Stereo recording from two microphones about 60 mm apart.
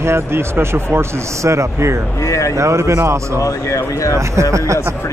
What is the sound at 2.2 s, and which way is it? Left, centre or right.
Speech, left.